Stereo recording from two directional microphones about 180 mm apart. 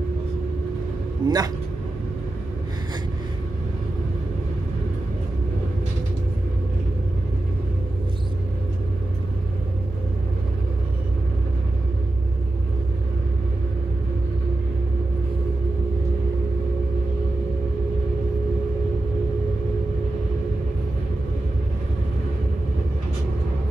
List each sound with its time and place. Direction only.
1.2 s a man's voice: 20° right (ahead or behind)